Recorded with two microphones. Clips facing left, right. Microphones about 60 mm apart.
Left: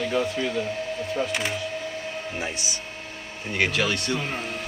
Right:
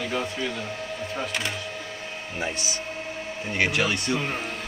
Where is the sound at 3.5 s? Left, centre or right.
Centre.